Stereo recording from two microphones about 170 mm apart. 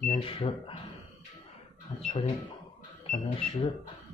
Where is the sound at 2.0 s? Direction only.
30° left (ahead or behind).